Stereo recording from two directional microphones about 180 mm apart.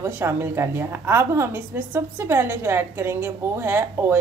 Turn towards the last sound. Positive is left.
turn(degrees=-10)  # may be behind; listen again after turning